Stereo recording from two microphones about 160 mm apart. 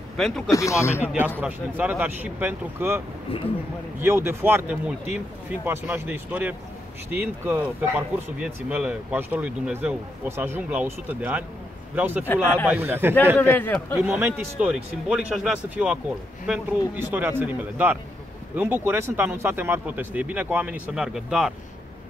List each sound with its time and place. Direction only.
0.5 s speech: 20° left (ahead or behind)
1.0 s speech: 10° right (ahead or behind)
4.0 s speech: 15° right (ahead or behind)
12.3 s a man's voice: 10° left (ahead or behind)
12.6 s speech: 15° right (ahead or behind)
13.4 s a man's voice: 10° left (ahead or behind)
13.9 s speech: 10° right (ahead or behind)